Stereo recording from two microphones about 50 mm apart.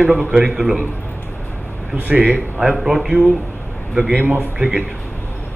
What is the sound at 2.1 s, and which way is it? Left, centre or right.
Speech, right.